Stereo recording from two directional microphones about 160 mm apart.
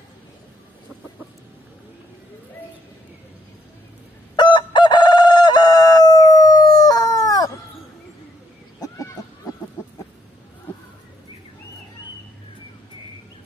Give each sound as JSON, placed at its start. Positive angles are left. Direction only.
{"t": 4.4, "sound": "crowing", "side_deg": 30}
{"t": 8.8, "sound": "fowl", "side_deg": 20}